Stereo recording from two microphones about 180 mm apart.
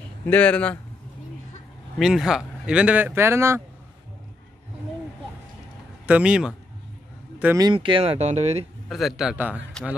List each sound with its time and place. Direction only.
0.3 s speech: 5° left (ahead or behind)
2.0 s speech: centre (ahead or behind)
6.0 s speech: 5° right (ahead or behind)
7.6 s speech: 30° right (ahead or behind)
8.8 s speech: centre (ahead or behind)